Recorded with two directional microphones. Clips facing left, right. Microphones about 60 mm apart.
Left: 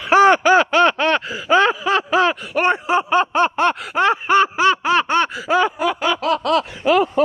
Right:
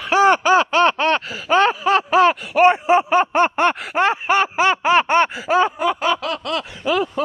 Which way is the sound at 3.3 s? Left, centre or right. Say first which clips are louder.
Even; right.